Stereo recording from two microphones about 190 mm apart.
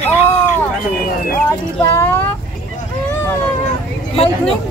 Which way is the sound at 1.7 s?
10° left (ahead or behind).